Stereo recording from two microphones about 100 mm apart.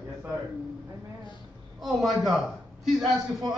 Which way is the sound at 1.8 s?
Centre (ahead or behind).